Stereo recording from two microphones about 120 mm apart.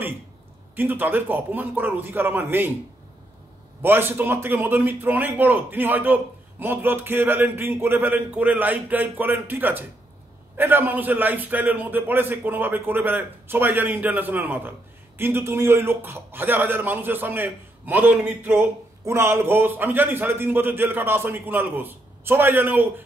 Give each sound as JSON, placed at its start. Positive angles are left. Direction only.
{"t": 0.7, "sound": "a man's voice", "side_deg": -15}
{"t": 3.8, "sound": "a man's voice", "side_deg": -20}